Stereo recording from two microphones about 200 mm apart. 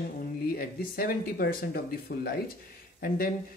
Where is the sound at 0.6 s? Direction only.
50° left (ahead or behind).